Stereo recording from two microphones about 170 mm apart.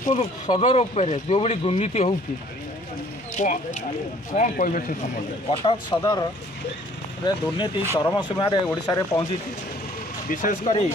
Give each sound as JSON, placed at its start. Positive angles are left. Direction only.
{"t": 0.1, "sound": "speech", "side_deg": 35}
{"t": 3.4, "sound": "speech", "side_deg": 45}
{"t": 5.5, "sound": "speech", "side_deg": 30}
{"t": 7.2, "sound": "speech", "side_deg": 25}
{"t": 10.3, "sound": "speech", "side_deg": 50}